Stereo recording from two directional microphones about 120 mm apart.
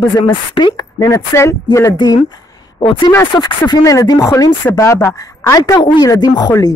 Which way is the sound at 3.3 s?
35° left (ahead or behind).